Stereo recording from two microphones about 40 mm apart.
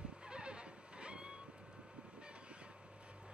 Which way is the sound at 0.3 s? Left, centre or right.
Right.